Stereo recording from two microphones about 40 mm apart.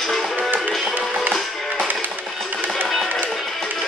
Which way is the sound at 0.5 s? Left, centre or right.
Right.